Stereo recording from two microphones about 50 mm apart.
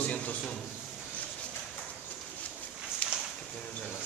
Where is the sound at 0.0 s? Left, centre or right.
Left.